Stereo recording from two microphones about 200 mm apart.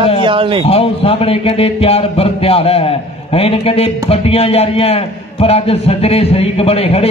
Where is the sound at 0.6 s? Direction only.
30° left (ahead or behind).